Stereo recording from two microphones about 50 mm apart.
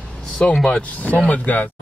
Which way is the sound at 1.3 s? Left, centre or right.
Left.